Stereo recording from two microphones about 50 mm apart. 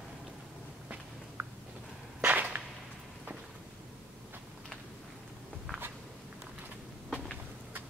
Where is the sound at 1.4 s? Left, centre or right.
Right.